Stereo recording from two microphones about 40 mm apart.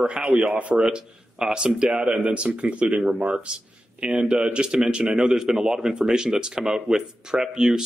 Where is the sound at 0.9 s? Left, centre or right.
Right.